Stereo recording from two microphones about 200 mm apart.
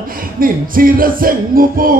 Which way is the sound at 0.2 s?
45° right (ahead or behind).